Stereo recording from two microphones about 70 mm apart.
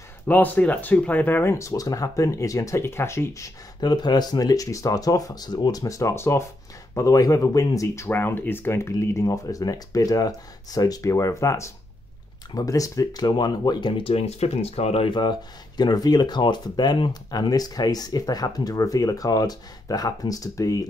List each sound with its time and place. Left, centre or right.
0.3 s speech: left
1.4 s speech: left
3.8 s speech: left
7.0 s speech: left
8.1 s speech: left
15.8 s speech: left